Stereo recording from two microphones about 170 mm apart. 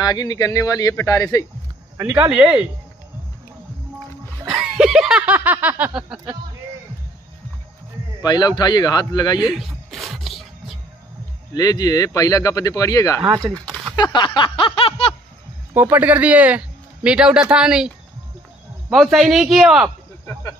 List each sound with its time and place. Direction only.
0.0 s speech: 25° left (ahead or behind)
2.0 s speech: 10° right (ahead or behind)
4.5 s snicker: 5° right (ahead or behind)
5.9 s speech: 5° right (ahead or behind)
8.2 s speech: 25° left (ahead or behind)
9.4 s music: centre (ahead or behind)
11.5 s speech: 20° left (ahead or behind)
13.3 s speech: 20° right (ahead or behind)
13.9 s a sound: 25° left (ahead or behind)
15.7 s speech: 10° right (ahead or behind)